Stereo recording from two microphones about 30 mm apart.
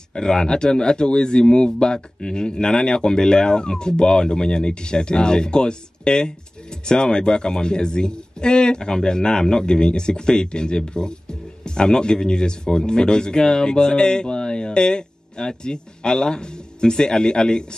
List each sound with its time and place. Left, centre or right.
0.1 s speech: left